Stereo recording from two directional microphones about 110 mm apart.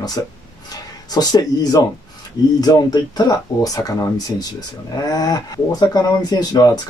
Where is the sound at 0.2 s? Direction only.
30° left (ahead or behind).